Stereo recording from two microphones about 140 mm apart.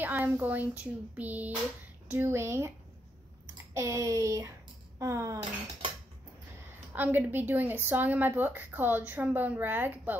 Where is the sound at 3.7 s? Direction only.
25° right (ahead or behind).